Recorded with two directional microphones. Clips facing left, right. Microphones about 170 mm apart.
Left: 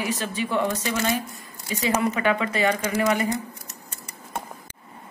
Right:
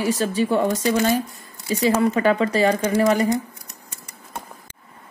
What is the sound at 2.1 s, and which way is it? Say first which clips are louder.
Speech: right 5 dB; 35° right (ahead or behind).